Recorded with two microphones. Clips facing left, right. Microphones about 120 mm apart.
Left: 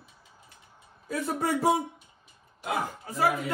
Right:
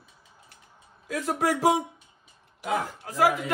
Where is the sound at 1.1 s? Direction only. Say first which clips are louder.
Right 2 dB; 90° right.